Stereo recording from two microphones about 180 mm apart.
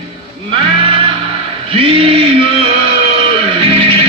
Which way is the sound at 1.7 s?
30° right (ahead or behind).